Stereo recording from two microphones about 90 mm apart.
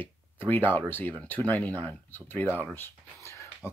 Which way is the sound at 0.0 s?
20° left (ahead or behind).